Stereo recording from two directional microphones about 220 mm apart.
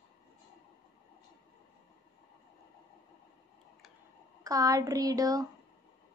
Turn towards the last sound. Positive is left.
turn(degrees=-15)  # may be behind; listen again after turning